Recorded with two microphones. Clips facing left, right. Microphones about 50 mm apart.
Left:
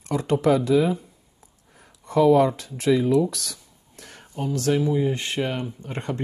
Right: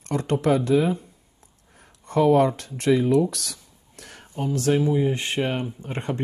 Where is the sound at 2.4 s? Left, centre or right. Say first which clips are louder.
Even; centre.